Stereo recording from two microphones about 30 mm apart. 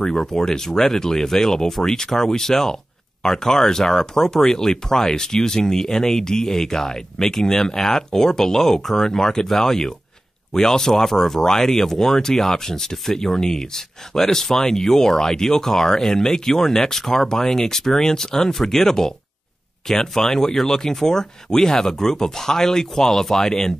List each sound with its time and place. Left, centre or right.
0.0 s speech: centre
0.7 s speech: centre
0.9 s speech: centre
12.9 s speech: centre